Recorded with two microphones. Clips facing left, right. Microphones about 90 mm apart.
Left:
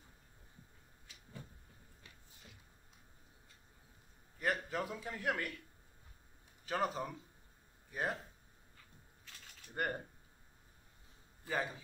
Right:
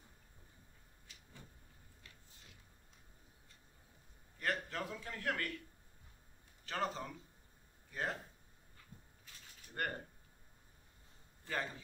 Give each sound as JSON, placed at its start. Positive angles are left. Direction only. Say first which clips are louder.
{"t": 4.4, "sound": "a man's voice", "louder": "left 3 dB", "side_deg": 10}
{"t": 6.6, "sound": "speech", "louder": "left 3 dB", "side_deg": 10}
{"t": 9.3, "sound": "mechanisms", "louder": "left 3 dB", "side_deg": 90}
{"t": 9.8, "sound": "speech", "louder": "left 2 dB", "side_deg": 10}
{"t": 11.4, "sound": "speech", "louder": "left 3 dB", "side_deg": 10}